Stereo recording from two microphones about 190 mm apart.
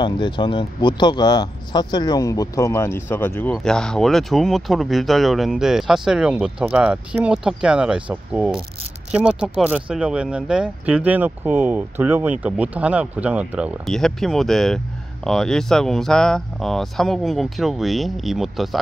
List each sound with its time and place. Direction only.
0.0 s speech: 25° left (ahead or behind); by 18.8 s centre (ahead or behind)